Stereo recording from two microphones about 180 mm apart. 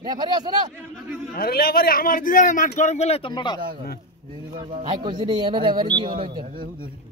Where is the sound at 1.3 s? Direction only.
55° left (ahead or behind); by 3.5 s 25° left (ahead or behind).